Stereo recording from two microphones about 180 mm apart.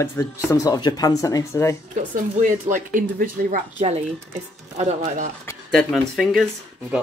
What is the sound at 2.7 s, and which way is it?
Speech, 50° right (ahead or behind).